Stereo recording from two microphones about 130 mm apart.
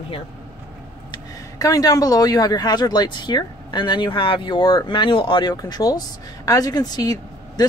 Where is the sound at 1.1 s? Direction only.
25° left (ahead or behind).